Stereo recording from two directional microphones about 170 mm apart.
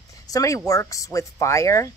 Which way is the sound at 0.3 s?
20° left (ahead or behind).